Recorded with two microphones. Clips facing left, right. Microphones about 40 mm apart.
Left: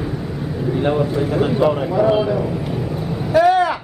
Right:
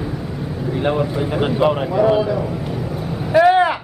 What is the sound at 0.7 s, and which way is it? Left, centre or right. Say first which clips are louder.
Speech: left 1 dB; centre.